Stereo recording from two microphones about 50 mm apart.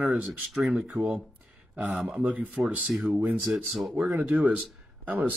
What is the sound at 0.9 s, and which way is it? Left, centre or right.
Speech, right.